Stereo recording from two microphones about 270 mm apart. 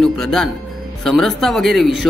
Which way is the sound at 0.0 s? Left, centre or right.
Centre.